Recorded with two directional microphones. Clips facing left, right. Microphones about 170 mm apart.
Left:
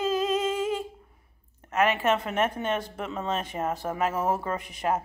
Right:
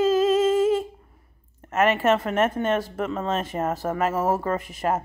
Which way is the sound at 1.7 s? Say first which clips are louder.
Right 3 dB; centre (ahead or behind).